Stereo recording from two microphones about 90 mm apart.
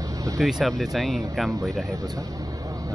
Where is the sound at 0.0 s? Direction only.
40° right (ahead or behind).